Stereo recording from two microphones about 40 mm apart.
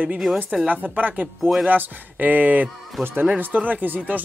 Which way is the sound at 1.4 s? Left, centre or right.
Centre.